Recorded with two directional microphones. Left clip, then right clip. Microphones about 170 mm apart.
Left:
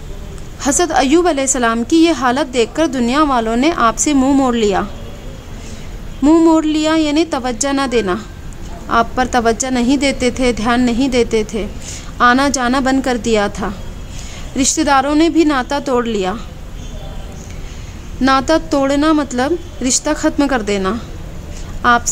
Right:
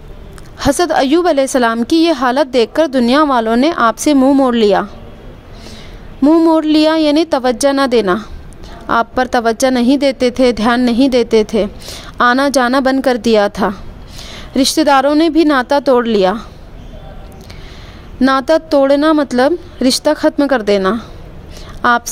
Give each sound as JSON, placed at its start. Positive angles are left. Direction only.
{"t": 0.6, "sound": "a woman's voice", "side_deg": -35}
{"t": 6.2, "sound": "a woman's voice", "side_deg": -30}
{"t": 18.2, "sound": "a woman's voice", "side_deg": -40}